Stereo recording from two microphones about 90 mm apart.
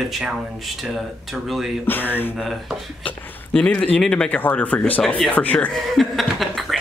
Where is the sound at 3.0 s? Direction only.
10° left (ahead or behind).